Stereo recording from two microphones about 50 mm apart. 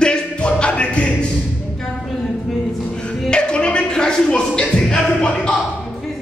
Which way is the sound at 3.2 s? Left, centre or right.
Centre.